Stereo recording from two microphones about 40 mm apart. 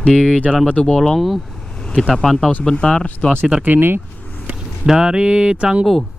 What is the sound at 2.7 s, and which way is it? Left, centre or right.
Speech, left.